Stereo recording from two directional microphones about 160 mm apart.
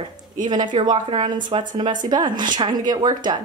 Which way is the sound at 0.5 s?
30° right (ahead or behind).